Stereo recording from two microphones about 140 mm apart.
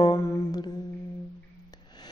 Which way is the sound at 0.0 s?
25° left (ahead or behind).